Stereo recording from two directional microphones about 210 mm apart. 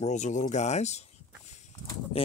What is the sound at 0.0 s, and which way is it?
Speech, 35° left (ahead or behind).